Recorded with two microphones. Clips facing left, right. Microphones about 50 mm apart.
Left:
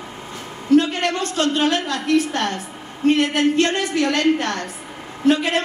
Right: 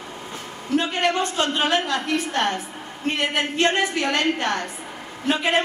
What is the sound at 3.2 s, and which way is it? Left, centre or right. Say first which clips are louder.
A woman's voice: left 3 dB; centre.